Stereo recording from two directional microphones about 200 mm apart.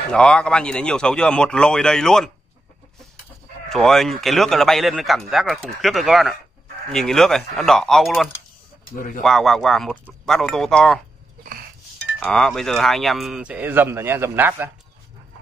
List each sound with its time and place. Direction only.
0.1 s speech: 5° left (ahead or behind)
3.6 s speech: centre (ahead or behind)
8.9 s speech: 45° left (ahead or behind)
9.2 s speech: centre (ahead or behind)
12.2 s speech: 5° left (ahead or behind)